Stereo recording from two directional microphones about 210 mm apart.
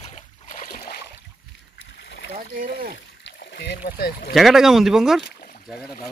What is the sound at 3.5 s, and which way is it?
Speech, 50° left (ahead or behind).